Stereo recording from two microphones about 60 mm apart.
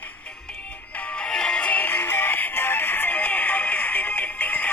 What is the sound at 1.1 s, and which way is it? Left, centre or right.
Music, centre.